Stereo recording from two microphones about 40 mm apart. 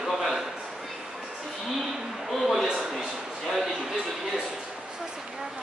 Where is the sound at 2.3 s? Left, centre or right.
Centre.